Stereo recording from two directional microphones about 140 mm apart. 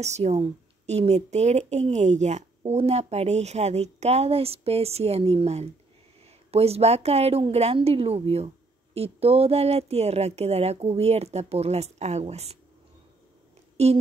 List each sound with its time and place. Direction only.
0.0 s speech: 50° right (ahead or behind)
13.8 s speech: 50° right (ahead or behind)